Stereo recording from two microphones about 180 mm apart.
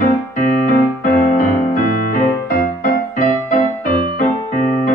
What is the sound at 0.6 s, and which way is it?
Music, 50° left (ahead or behind).